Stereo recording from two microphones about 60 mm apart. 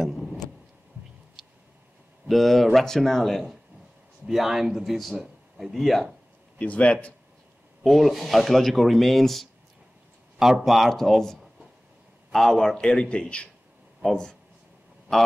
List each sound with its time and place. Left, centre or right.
0.0 s vehicle: centre
2.2 s speech: centre
6.6 s a man's voice: left
7.8 s a man's voice: centre